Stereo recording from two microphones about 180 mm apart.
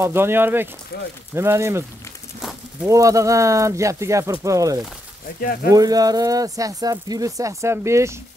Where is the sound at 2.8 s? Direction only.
20° right (ahead or behind).